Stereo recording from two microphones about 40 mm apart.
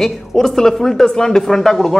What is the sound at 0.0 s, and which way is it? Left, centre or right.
A man's voice, centre.